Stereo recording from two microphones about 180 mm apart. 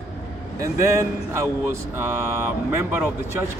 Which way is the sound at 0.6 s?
15° right (ahead or behind).